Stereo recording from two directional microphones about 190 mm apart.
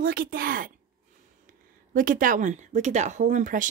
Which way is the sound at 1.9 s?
45° right (ahead or behind).